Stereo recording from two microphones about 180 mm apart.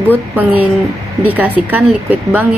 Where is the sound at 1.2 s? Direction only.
10° right (ahead or behind).